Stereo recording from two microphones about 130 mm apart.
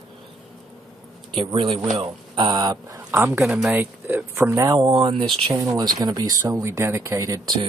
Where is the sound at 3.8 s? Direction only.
15° right (ahead or behind).